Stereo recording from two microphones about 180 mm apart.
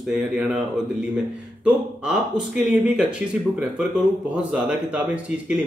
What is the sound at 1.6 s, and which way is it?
A man's voice, 5° right (ahead or behind).